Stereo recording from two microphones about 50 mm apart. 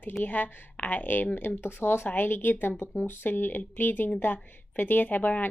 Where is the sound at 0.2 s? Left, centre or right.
Left.